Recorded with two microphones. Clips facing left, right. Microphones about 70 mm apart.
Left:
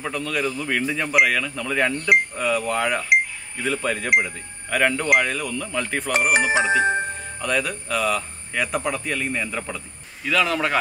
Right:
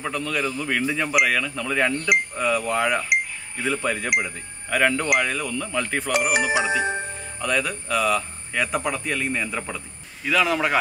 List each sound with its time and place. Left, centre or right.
0.0 s speech: centre
6.3 s music: left
7.3 s a man's voice: centre